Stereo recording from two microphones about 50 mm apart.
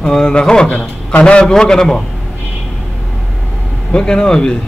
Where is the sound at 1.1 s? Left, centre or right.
Left.